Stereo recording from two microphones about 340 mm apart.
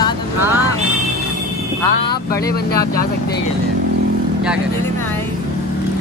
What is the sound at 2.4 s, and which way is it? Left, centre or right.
Speech, left.